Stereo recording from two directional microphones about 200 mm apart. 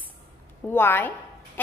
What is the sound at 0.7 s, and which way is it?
Speech, 10° left (ahead or behind).